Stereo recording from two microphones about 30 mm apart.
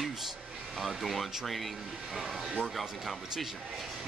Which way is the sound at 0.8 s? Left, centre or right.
Centre.